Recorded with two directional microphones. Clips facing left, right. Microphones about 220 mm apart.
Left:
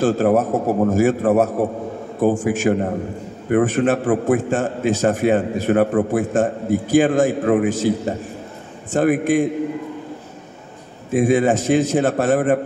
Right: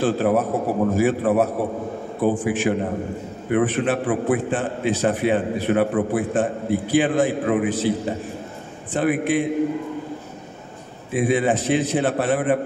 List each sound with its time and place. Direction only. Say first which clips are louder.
0.0 s a man's voice: left 3 dB; 45° left (ahead or behind)
8.9 s a man's voice: left 4 dB; 45° left (ahead or behind)
11.1 s a man's voice: left 4 dB; 45° left (ahead or behind)